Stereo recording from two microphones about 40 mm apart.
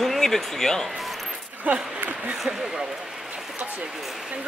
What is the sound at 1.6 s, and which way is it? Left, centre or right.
Speech, right.